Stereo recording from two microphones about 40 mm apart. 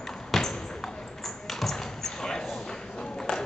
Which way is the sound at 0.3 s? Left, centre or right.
Centre.